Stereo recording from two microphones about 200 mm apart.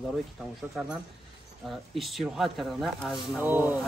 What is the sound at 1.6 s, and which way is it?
Speech, centre (ahead or behind).